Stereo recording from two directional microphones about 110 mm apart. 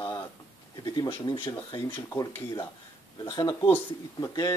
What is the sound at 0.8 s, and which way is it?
Speech, 40° left (ahead or behind).